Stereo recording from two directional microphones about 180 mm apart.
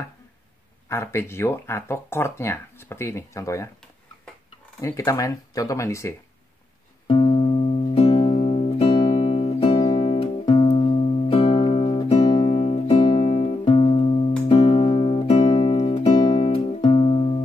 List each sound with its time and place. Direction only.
0.8 s speech: 15° left (ahead or behind)
4.7 s speech: 20° left (ahead or behind)
7.1 s music: 30° left (ahead or behind)